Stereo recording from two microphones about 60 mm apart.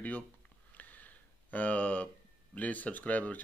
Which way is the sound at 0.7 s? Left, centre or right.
Left.